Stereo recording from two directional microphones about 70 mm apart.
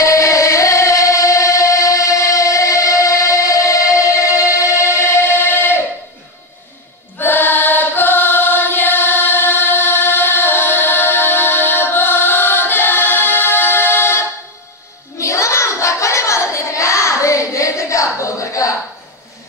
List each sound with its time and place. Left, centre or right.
0.0 s music: left
7.2 s chant: left
15.1 s child singing: left